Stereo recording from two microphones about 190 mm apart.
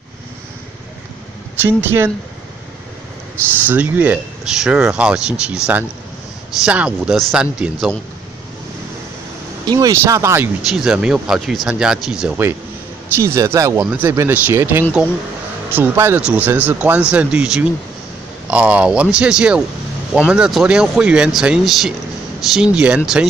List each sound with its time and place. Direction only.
1.6 s speech: 10° right (ahead or behind)
3.6 s speech: 10° right (ahead or behind)
9.7 s speech: 20° right (ahead or behind)
10.7 s speech: 5° right (ahead or behind)